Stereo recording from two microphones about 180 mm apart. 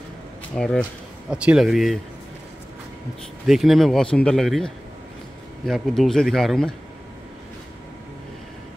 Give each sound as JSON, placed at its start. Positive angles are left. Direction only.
{"t": 0.6, "sound": "speech", "side_deg": 5}
{"t": 1.3, "sound": "speech", "side_deg": -5}
{"t": 3.4, "sound": "speech", "side_deg": 0}